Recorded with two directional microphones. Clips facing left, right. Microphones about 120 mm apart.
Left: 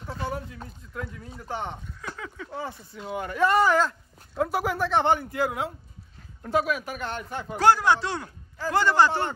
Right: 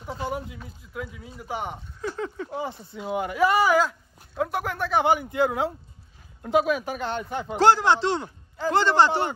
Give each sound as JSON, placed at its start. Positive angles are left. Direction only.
{"t": 0.0, "sound": "speech", "side_deg": -15}
{"t": 2.0, "sound": "speech", "side_deg": -35}
{"t": 3.2, "sound": "speech", "side_deg": -10}
{"t": 5.2, "sound": "speech", "side_deg": -20}
{"t": 6.6, "sound": "speech", "side_deg": -30}